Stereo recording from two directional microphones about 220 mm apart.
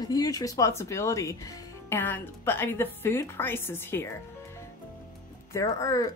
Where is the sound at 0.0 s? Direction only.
15° left (ahead or behind).